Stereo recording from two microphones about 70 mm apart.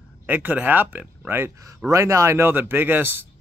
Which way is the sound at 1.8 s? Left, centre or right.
Right.